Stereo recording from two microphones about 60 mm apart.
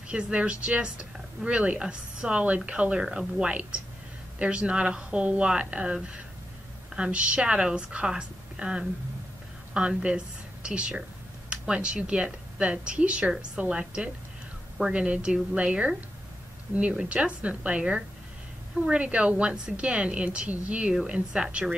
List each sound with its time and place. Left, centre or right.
0.1 s speech: centre
7.0 s a woman's voice: centre